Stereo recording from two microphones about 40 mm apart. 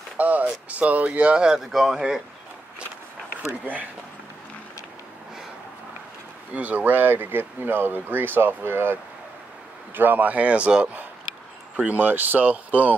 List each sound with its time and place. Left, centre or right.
0.2 s speech: right
1.0 s speech: right
1.6 s speech: centre
2.0 s speech: centre
6.5 s speech: right
11.7 s speech: right